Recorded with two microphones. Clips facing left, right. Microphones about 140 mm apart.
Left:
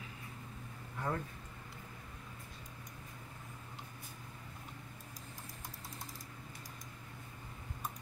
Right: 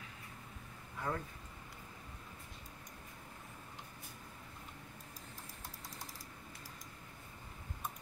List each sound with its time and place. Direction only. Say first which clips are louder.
1.1 s speech: left 1 dB; 20° left (ahead or behind)